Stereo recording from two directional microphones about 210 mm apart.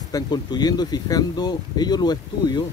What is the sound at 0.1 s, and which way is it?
Speech, 20° left (ahead or behind).